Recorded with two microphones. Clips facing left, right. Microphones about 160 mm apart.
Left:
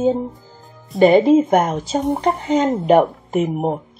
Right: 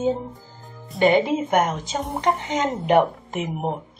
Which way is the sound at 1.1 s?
30° left (ahead or behind).